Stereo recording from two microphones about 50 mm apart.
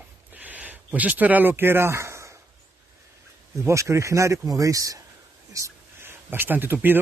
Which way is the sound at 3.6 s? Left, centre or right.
Right.